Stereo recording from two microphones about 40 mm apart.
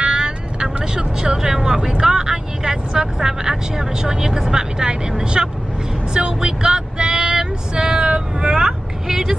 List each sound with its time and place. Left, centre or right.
0.0 s speech: right
6.1 s vehicle: right